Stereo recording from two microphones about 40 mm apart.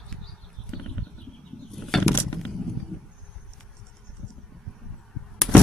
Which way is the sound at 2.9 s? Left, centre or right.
Centre.